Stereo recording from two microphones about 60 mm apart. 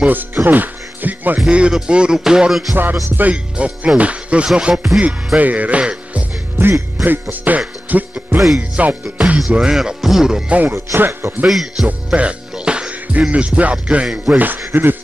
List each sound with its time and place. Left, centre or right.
0.0 s music: right
1.5 s music: centre
1.8 s speech: centre
2.7 s beatboxing: right
3.5 s music: right
5.0 s speech: right
7.0 s music: right
8.4 s speech: centre
8.7 s music: right
9.5 s speech: centre
10.7 s speech: right
11.4 s speech: centre
12.2 s music: centre
14.7 s beatboxing: right